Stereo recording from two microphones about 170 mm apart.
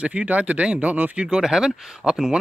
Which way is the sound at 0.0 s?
5° right (ahead or behind).